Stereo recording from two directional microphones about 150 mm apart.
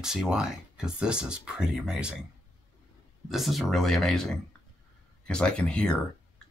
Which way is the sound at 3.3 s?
Centre (ahead or behind).